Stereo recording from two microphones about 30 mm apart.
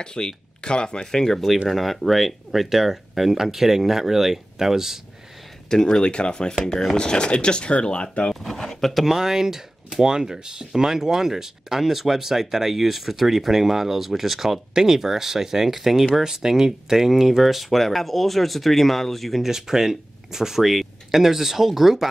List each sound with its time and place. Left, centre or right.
0.0 s speech: left
1.1 s speech: centre
1.7 s speech: centre
5.7 s speech: left
8.3 s a sound: centre
9.0 s speech: centre
14.7 s speech: right; by 19.4 s centre
19.4 s speech: centre